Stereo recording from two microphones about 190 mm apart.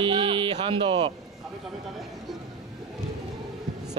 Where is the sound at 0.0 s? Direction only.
25° right (ahead or behind).